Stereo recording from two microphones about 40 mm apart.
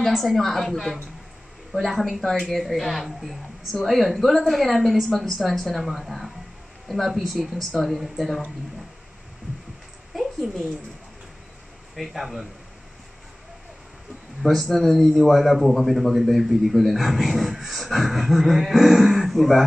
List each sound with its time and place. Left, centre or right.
0.0 s a man's voice: centre
5.7 s a man's voice: centre
10.1 s a sound: centre
11.9 s a man's voice: centre
14.4 s a man's voice: centre